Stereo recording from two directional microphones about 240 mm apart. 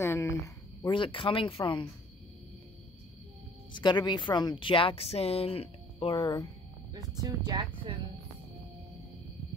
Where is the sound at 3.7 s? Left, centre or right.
Centre.